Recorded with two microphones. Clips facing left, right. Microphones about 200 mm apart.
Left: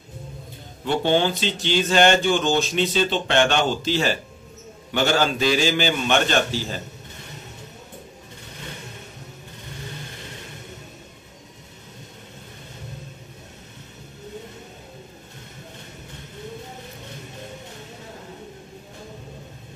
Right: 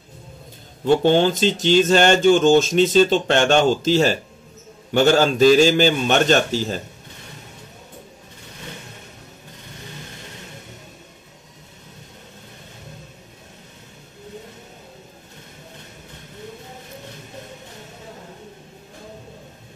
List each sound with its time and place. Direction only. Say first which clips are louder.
1.0 s speech: right 1 dB; 45° right (ahead or behind)